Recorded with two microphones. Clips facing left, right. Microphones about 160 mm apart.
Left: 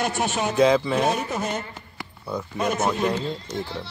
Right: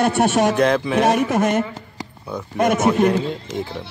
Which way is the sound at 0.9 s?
75° right (ahead or behind).